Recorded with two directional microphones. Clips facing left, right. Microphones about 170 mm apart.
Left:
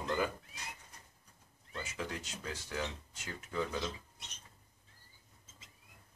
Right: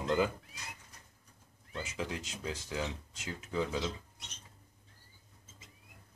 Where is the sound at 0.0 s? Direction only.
20° right (ahead or behind).